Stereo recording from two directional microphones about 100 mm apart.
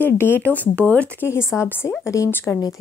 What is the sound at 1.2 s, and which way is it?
Speech, 25° left (ahead or behind).